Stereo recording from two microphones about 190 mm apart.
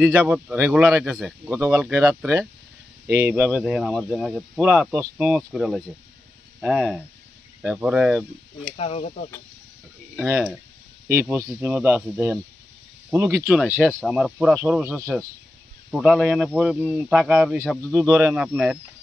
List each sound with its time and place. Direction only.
0.0 s speech: 5° right (ahead or behind)
8.7 s speech: 35° left (ahead or behind)
10.1 s speech: 5° right (ahead or behind)
14.0 s speech: 5° right (ahead or behind)